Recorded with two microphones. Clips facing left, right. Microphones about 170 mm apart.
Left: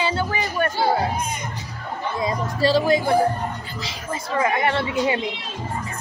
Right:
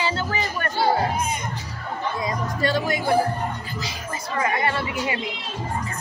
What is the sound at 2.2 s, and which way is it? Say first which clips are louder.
Speech: left 5 dB; 30° left (ahead or behind).